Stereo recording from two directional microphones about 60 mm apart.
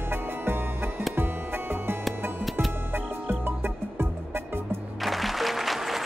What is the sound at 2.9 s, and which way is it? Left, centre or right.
Music, right.